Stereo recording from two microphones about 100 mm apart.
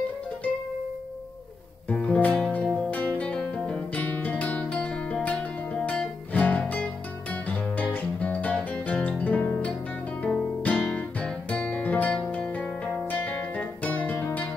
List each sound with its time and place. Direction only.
1.9 s music: 15° left (ahead or behind)
2.5 s guitar: 10° left (ahead or behind)
5.9 s music: 15° left (ahead or behind)